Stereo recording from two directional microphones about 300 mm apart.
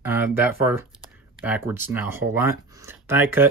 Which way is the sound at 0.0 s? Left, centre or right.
Centre.